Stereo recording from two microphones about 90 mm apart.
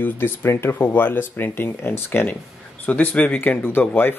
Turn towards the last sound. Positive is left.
turn(degrees=20)  # may be behind; listen again after turning